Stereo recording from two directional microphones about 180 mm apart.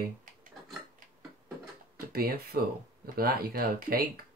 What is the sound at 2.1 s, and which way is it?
Speech, 60° right (ahead or behind).